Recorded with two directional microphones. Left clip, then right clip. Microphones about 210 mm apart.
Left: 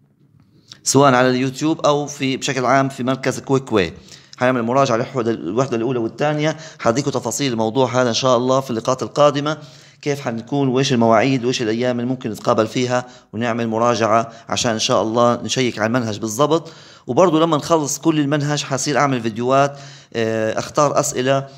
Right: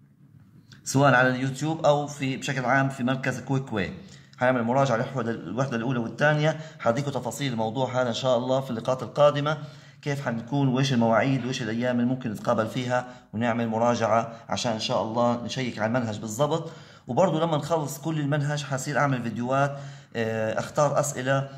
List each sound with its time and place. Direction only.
0.8 s speech: 40° left (ahead or behind)